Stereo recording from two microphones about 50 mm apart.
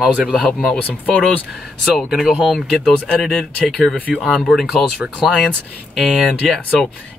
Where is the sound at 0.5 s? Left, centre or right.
Centre.